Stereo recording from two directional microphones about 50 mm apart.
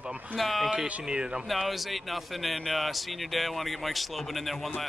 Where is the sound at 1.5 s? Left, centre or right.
Centre.